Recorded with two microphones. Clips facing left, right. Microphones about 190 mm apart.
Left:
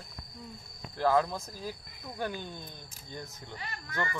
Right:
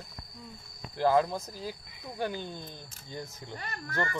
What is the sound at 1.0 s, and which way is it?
Speech, 15° right (ahead or behind).